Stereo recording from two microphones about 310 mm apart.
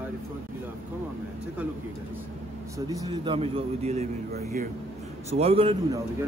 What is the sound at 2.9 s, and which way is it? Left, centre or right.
A man's voice, centre.